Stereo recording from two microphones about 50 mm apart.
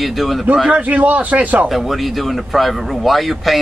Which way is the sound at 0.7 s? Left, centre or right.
Right.